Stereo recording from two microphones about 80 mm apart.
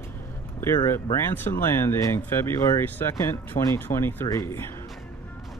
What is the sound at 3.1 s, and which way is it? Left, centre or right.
Speech, left.